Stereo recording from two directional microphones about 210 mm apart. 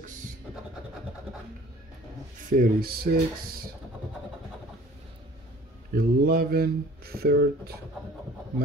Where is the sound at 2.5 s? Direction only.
45° right (ahead or behind).